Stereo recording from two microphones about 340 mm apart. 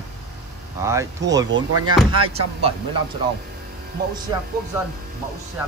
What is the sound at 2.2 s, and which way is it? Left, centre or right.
Speech, centre.